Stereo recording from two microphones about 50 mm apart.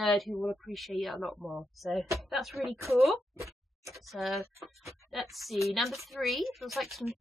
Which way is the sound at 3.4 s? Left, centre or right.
Right.